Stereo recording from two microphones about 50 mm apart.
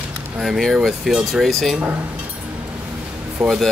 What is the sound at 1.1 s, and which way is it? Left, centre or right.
Speech, centre.